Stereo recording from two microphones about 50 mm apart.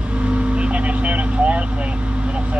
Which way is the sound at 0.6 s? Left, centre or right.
Right.